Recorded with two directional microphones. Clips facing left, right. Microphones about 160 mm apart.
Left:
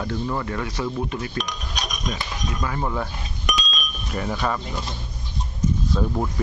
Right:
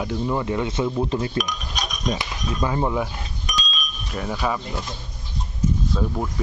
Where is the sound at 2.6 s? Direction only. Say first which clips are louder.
Right 5 dB; 25° right (ahead or behind).